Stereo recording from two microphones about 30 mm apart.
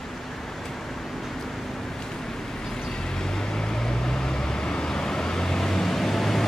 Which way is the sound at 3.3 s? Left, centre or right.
Centre.